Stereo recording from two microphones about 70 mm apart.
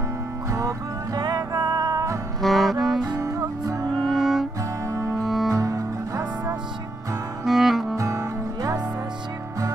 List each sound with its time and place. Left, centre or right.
0.5 s music: right
2.4 s music: centre
3.2 s music: right
3.9 s music: centre
4.8 s music: right
5.2 s music: centre
5.5 s music: right
7.4 s music: centre
8.0 s music: right